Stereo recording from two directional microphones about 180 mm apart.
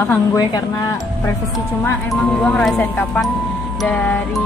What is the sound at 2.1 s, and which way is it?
Speech, 5° left (ahead or behind).